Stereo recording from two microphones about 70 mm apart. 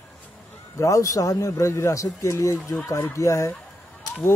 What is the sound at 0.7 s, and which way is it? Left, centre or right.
Speech, left.